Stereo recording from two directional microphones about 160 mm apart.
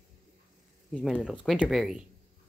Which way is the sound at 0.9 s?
10° left (ahead or behind).